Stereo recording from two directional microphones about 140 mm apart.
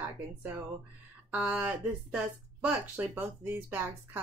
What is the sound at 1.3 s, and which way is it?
A woman's voice, 10° right (ahead or behind).